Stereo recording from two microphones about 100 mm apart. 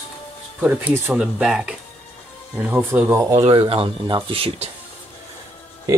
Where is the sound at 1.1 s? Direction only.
5° right (ahead or behind).